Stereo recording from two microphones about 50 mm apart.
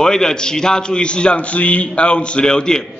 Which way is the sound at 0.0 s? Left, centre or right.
Centre.